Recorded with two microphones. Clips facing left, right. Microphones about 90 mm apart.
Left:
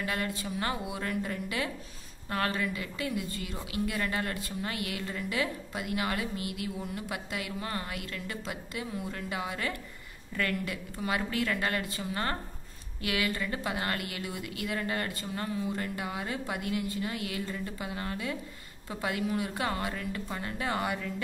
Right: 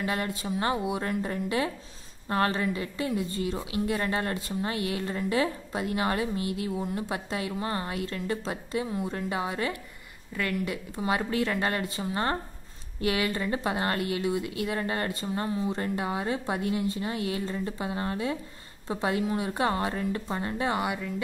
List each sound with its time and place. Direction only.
0.0 s a woman's voice: 25° right (ahead or behind)